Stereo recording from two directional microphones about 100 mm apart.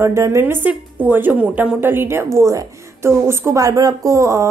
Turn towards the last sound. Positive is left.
turn(degrees=-30)  # may be behind; listen again after turning